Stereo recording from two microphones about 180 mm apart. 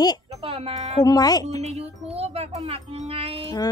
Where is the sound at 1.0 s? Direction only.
20° left (ahead or behind).